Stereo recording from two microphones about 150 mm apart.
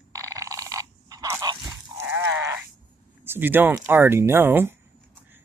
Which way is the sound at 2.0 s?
15° right (ahead or behind).